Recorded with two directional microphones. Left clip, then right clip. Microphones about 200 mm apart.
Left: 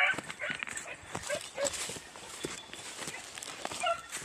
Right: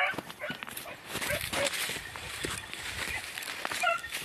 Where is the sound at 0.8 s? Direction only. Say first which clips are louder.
Right 4 dB; 5° left (ahead or behind).